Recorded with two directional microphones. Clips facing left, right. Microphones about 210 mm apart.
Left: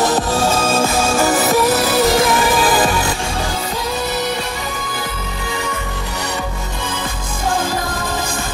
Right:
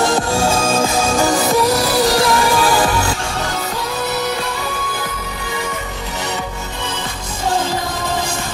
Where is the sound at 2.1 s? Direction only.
15° left (ahead or behind).